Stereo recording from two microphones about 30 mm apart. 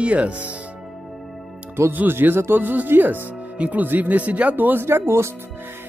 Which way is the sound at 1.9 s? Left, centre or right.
Right.